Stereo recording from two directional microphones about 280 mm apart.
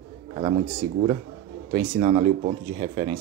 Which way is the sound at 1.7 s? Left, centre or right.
Centre.